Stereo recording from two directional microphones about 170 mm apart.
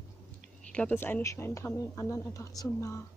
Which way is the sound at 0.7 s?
10° left (ahead or behind).